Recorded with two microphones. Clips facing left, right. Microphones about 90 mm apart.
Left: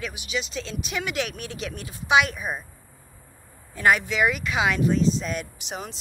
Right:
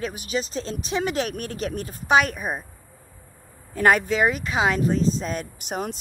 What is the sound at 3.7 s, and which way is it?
Speech, 40° right (ahead or behind).